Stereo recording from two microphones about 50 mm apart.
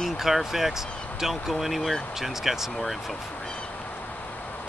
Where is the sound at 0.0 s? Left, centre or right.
Centre.